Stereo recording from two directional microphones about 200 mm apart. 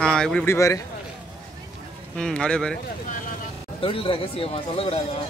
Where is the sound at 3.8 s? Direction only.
25° left (ahead or behind).